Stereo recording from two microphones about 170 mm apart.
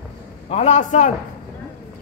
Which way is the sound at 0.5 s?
45° left (ahead or behind).